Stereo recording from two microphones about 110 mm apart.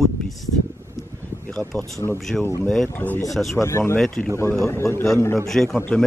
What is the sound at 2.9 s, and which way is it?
A man's voice, 20° left (ahead or behind).